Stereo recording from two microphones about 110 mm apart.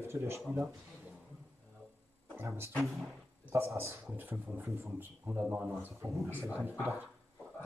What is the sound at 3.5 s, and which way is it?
Speech, 25° right (ahead or behind).